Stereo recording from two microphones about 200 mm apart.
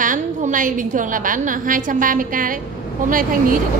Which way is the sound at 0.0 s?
40° right (ahead or behind).